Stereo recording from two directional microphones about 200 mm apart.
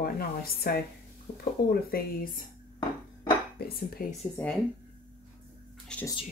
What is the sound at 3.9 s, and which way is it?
Speech, 45° left (ahead or behind).